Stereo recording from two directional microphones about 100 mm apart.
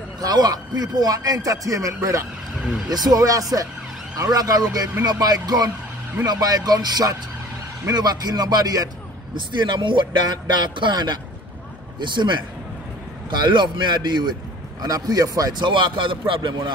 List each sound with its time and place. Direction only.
0.2 s a man's voice: 40° right (ahead or behind)
9.5 s a man's voice: 50° right (ahead or behind)